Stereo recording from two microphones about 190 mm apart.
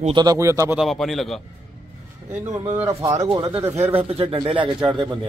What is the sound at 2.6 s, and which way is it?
Speech, 20° right (ahead or behind).